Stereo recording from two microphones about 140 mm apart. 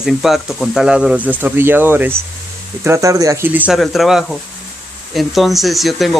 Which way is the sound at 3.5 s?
10° right (ahead or behind).